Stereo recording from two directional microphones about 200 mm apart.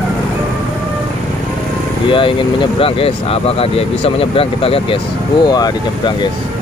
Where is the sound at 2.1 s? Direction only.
25° left (ahead or behind).